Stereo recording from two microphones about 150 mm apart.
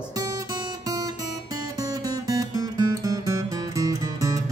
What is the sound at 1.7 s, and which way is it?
Music, 25° right (ahead or behind).